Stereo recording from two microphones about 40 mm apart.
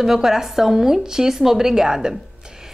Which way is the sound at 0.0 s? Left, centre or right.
Centre.